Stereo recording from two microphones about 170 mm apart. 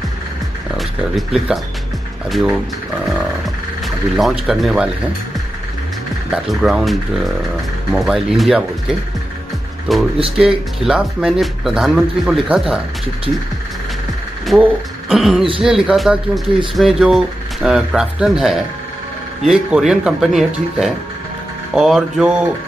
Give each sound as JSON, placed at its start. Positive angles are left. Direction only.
{"t": 0.7, "sound": "speech", "side_deg": 0}
{"t": 3.8, "sound": "speech", "side_deg": 0}
{"t": 6.3, "sound": "speech", "side_deg": -5}
{"t": 9.9, "sound": "speech", "side_deg": 0}
{"t": 14.4, "sound": "speech", "side_deg": 0}